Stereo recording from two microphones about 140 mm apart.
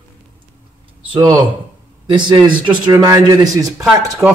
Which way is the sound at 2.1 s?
35° right (ahead or behind).